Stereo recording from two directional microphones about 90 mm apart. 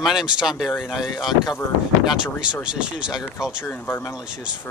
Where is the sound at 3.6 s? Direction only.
25° left (ahead or behind).